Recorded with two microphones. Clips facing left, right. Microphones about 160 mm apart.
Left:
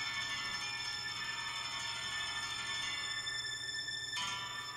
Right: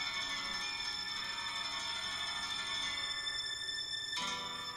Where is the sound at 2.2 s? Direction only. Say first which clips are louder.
Right 1 dB; 30° right (ahead or behind).